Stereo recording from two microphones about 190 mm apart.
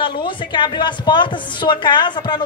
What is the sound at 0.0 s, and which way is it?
A woman's voice, 25° left (ahead or behind).